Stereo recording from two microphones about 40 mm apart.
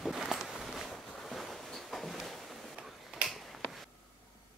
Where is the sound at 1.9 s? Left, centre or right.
Centre.